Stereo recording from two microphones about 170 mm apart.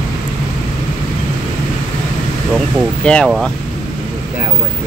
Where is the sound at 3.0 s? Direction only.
5° left (ahead or behind).